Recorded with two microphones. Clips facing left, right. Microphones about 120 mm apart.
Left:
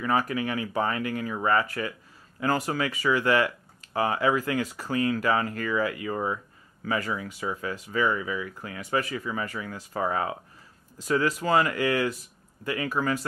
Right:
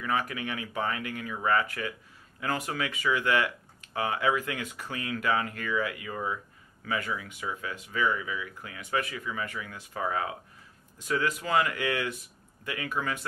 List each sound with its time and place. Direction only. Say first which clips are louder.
0.0 s speech: left 5 dB; 35° left (ahead or behind)